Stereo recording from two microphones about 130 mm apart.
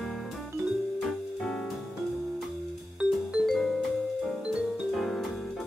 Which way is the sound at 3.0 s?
10° right (ahead or behind).